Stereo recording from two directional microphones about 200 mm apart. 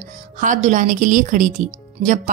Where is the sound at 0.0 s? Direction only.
35° right (ahead or behind).